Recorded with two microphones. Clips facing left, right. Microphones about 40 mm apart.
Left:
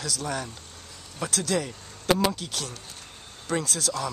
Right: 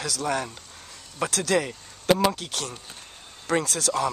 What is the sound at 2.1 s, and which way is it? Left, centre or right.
A man's voice, centre.